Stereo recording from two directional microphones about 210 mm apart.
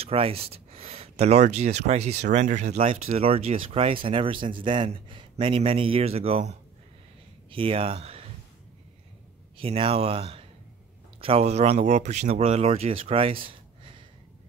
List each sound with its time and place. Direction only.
0.0 s speech: 25° right (ahead or behind)
7.5 s speech: 25° right (ahead or behind)
9.6 s speech: 25° right (ahead or behind)
13.0 s a sound: 25° right (ahead or behind)